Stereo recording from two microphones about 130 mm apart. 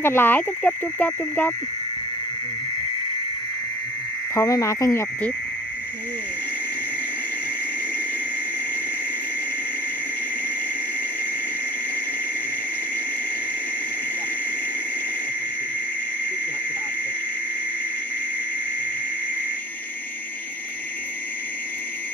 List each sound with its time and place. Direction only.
0.0 s speech: 15° left (ahead or behind)
4.4 s speech: 25° left (ahead or behind)